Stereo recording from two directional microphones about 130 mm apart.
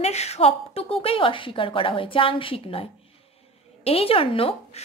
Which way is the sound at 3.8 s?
50° left (ahead or behind).